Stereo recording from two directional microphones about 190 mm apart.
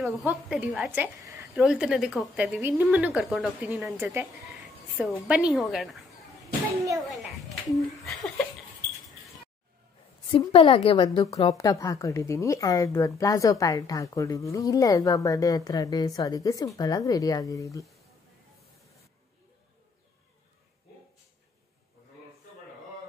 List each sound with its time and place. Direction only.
0.0 s a woman's voice: 5° right (ahead or behind)
8.0 s a woman's voice: centre (ahead or behind)
10.3 s a woman's voice: 30° left (ahead or behind)
11.5 s a woman's voice: 15° left (ahead or behind)